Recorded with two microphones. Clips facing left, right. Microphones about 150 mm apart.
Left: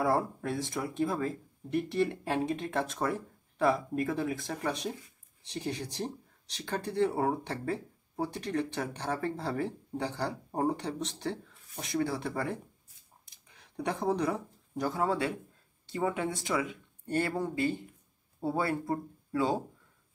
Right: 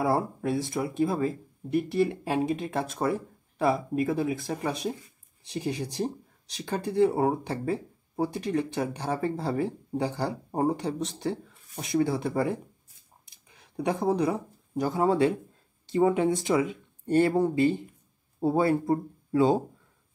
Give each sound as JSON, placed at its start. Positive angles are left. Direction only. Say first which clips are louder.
{"t": 0.0, "sound": "speech", "louder": "right 3 dB", "side_deg": -10}
{"t": 13.6, "sound": "speech", "louder": "right 5 dB", "side_deg": -10}